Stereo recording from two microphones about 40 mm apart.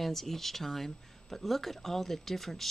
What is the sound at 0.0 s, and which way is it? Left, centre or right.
Speech, centre.